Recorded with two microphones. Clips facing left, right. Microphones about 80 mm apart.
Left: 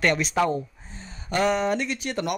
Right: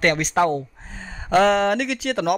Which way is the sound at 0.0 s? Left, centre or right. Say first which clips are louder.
Right 3 dB; right.